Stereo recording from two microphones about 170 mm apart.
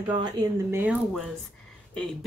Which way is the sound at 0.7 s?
10° right (ahead or behind).